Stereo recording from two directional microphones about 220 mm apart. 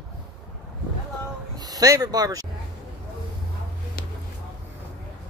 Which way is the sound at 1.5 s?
15° right (ahead or behind).